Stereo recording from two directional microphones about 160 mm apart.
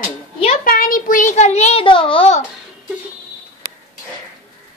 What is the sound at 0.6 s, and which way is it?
A child's voice, 65° left (ahead or behind).